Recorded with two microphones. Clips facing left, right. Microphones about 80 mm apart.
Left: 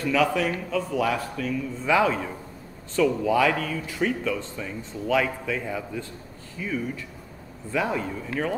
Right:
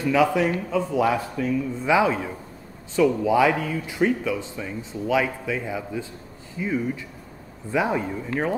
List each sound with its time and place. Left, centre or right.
0.0 s speech: centre
6.6 s speech: centre